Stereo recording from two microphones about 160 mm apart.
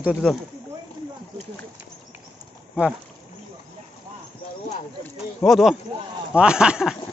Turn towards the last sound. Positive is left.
turn(degrees=-5)  # may be behind; listen again after turning